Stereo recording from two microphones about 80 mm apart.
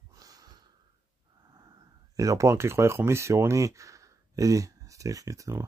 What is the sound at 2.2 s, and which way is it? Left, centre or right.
Speech, right.